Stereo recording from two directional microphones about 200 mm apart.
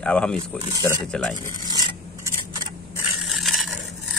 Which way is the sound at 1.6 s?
20° right (ahead or behind).